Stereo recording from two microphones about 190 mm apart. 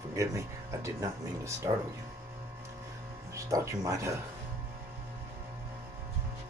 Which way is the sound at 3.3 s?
15° right (ahead or behind).